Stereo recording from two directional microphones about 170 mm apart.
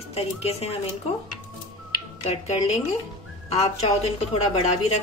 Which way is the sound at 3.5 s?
40° left (ahead or behind).